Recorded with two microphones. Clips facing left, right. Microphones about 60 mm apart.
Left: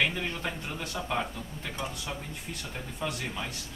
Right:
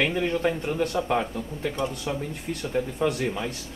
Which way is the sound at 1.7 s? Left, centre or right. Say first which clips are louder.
Right 6 dB; centre.